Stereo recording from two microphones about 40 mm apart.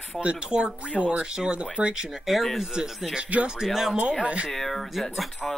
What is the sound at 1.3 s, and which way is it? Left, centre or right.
Speech, centre.